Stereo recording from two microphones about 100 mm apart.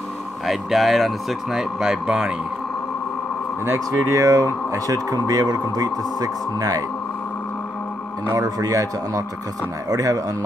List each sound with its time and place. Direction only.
0.5 s speech: centre (ahead or behind)
3.6 s speech: 30° right (ahead or behind)
8.3 s speech: 35° right (ahead or behind)